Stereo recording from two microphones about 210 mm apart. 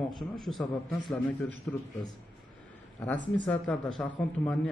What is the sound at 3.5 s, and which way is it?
Speech, 5° left (ahead or behind).